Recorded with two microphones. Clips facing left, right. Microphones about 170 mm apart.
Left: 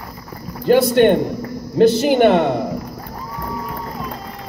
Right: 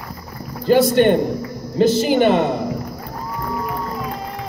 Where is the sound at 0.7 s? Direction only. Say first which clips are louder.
Left 1 dB; 55° left (ahead or behind).